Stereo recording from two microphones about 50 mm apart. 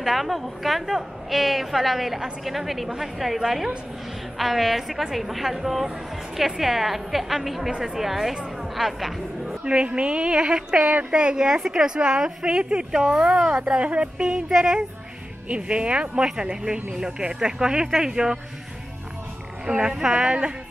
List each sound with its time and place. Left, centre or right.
0.0 s a woman's voice: centre
9.7 s speech: right
19.6 s speech: centre